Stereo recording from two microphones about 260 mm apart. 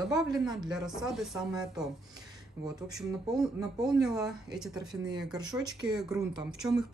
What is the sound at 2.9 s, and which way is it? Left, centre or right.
A man's voice, centre.